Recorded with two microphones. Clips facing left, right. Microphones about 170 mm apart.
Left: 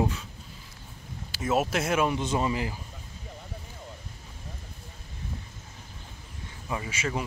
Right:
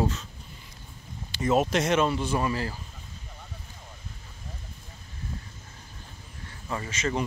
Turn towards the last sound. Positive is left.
turn(degrees=10)  # may be behind; listen again after turning